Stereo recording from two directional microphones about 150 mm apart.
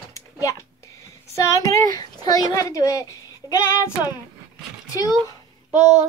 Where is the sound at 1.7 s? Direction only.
25° left (ahead or behind).